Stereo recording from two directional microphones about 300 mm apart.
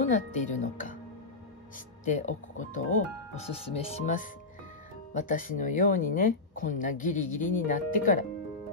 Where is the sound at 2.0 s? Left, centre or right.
Left.